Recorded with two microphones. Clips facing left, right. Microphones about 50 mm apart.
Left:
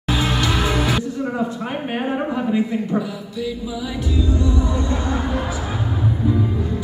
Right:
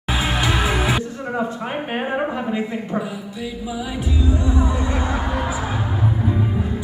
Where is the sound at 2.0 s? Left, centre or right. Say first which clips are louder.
Left 2 dB; centre.